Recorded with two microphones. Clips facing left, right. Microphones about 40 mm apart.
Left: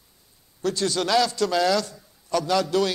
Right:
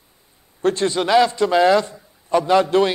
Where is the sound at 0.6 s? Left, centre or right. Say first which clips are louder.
Right 6 dB; right.